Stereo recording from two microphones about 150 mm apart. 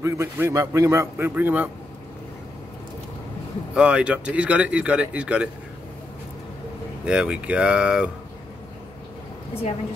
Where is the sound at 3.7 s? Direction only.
5° right (ahead or behind).